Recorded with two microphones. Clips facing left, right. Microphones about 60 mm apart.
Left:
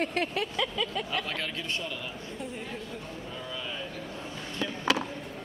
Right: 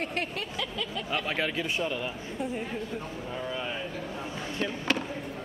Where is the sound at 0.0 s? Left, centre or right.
Left.